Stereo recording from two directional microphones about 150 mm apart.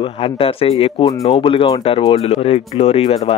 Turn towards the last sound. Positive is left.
turn(degrees=40)  # may be behind; listen again after turning